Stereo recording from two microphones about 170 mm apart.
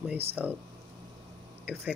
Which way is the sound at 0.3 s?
10° right (ahead or behind).